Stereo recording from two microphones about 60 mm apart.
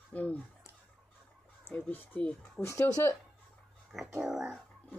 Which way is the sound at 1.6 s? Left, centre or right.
Left.